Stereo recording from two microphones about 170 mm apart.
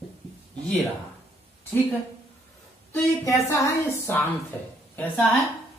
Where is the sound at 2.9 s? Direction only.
15° left (ahead or behind).